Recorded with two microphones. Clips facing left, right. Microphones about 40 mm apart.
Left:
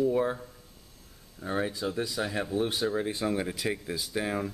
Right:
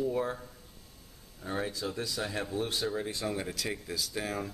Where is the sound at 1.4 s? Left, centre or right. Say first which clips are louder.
Left 4 dB; centre.